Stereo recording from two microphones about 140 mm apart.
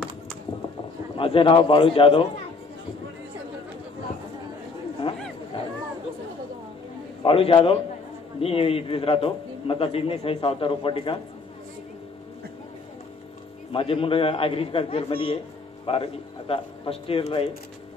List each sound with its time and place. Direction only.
1.1 s a man's voice: 40° left (ahead or behind)
5.0 s chatter: 35° left (ahead or behind)
7.2 s a man's voice: 40° left (ahead or behind)
13.7 s a man's voice: 40° left (ahead or behind)